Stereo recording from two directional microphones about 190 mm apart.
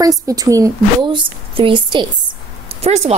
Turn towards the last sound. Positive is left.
turn(degrees=-35)  # may be behind; listen again after turning